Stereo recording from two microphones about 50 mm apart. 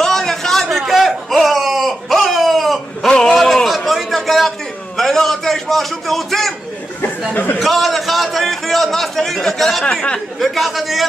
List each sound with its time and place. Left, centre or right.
0.0 s a sound: centre
3.1 s a sound: centre
3.6 s a man's voice: centre
7.6 s a man's voice: centre
9.8 s speech: left
10.4 s a man's voice: centre